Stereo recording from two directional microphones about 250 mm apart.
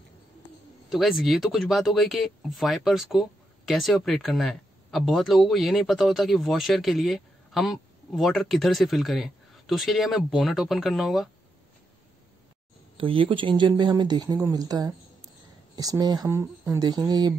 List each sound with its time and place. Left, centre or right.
0.8 s speech: centre
12.9 s speech: right